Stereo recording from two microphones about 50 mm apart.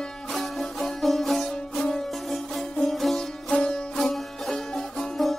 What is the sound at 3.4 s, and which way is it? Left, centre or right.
Music, centre.